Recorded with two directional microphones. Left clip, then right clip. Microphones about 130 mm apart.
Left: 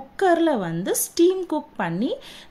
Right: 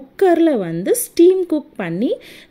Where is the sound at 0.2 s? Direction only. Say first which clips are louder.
Right 5 dB; 25° right (ahead or behind).